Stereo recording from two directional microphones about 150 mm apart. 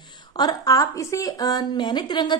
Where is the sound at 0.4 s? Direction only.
25° left (ahead or behind).